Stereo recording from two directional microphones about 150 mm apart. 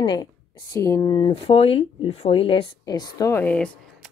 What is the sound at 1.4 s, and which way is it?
Speech, 40° left (ahead or behind).